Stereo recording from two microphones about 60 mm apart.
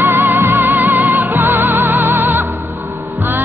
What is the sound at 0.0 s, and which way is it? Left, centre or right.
Music, right.